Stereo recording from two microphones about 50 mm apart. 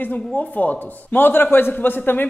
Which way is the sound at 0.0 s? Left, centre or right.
Left.